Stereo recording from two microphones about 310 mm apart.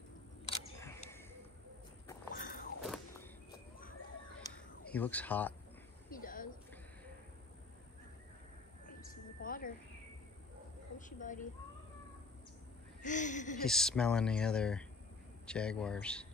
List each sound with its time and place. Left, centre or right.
0.5 s single-lens reflex camera: centre
2.3 s biting: left
2.8 s a sound: centre
4.4 s a sound: centre
6.0 s a sound: left
8.8 s bird: left
11.0 s a woman's voice: left
13.0 s speech: left
13.7 s speech: centre